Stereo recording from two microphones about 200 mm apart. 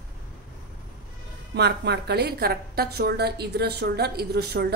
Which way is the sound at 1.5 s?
55° right (ahead or behind).